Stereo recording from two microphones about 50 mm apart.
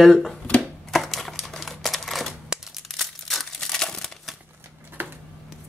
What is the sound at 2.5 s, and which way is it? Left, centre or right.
Crumpling, centre.